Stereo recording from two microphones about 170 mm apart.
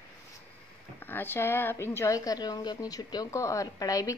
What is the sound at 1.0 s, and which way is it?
A woman's voice, 10° left (ahead or behind).